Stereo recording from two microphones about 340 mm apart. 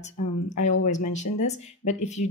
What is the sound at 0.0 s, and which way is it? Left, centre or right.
Speech, centre.